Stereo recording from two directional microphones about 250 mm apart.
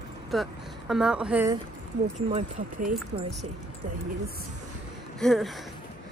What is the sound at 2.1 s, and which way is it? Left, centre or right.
Speech, right.